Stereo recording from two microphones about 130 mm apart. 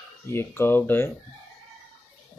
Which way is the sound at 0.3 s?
20° left (ahead or behind).